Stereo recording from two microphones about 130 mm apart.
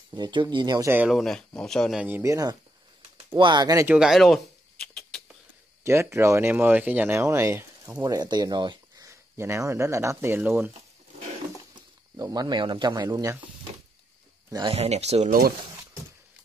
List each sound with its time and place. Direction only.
0.1 s speech: 35° right (ahead or behind)
0.8 s speech: 15° right (ahead or behind)
1.1 s speech: 5° left (ahead or behind)
2.0 s speech: 15° right (ahead or behind)
2.2 s speech: 25° right (ahead or behind)
3.8 s a sound: 5° right (ahead or behind)
5.9 s speech: 20° right (ahead or behind)
8.0 s speech: 30° right (ahead or behind)
9.1 s speech: 20° right (ahead or behind)
12.2 s speech: 30° right (ahead or behind)
14.7 s speech: 55° right (ahead or behind)